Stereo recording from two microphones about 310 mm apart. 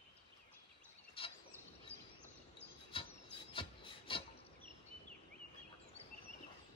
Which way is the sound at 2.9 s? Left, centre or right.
Centre.